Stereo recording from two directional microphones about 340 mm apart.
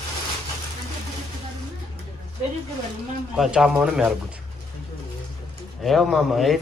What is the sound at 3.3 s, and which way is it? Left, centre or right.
Speech, centre.